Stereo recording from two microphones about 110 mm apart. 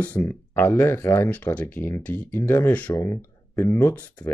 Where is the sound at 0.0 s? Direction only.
15° left (ahead or behind).